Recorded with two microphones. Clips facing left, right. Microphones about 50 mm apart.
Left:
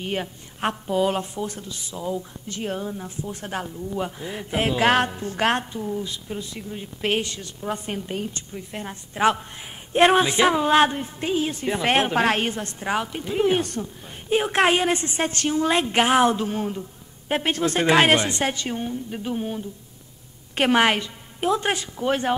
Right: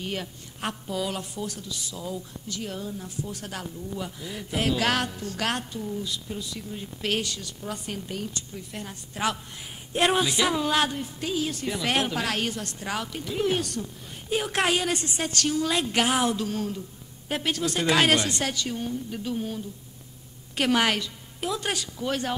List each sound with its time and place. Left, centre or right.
0.0 s a woman's voice: left